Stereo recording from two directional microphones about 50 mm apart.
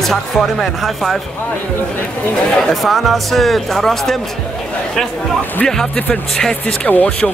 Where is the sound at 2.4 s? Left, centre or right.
Centre.